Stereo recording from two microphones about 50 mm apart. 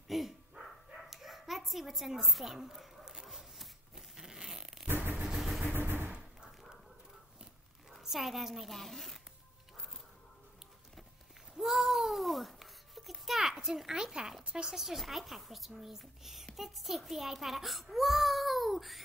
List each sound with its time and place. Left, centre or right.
0.1 s a child's voice: centre
0.7 s bow-wow: centre
4.8 s vehicle: right
5.2 s vehicle: centre
5.7 s vehicle: right
8.0 s a child's voice: centre
11.5 s a child's voice: centre